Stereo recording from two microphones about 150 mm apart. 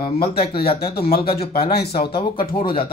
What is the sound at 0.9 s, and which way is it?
Speech, 90° left.